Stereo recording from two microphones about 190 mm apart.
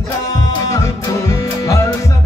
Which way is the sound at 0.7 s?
15° left (ahead or behind).